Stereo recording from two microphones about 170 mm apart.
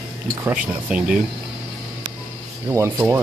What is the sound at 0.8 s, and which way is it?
Speech, 5° right (ahead or behind).